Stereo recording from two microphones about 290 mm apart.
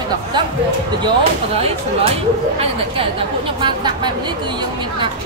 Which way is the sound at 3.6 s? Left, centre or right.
Centre.